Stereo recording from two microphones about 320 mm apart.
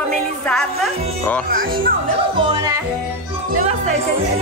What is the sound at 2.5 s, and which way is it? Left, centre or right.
Yodeling, centre.